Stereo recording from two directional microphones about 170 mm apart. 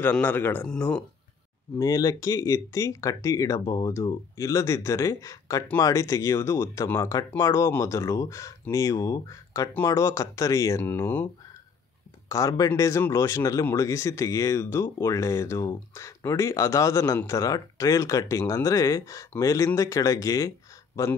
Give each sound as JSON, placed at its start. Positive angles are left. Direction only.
{"t": 0.0, "sound": "speech", "side_deg": 10}
{"t": 1.8, "sound": "speech", "side_deg": 20}
{"t": 12.3, "sound": "speech", "side_deg": 20}